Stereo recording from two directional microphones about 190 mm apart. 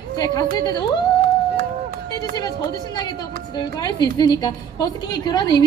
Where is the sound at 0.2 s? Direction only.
20° left (ahead or behind).